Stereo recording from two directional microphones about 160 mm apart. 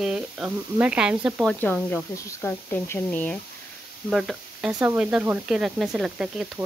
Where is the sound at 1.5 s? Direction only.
10° left (ahead or behind).